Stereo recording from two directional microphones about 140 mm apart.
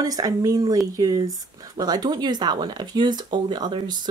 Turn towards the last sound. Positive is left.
turn(degrees=-30)  # may be behind; listen again after turning